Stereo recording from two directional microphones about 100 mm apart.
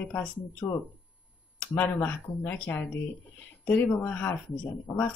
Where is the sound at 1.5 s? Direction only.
15° left (ahead or behind).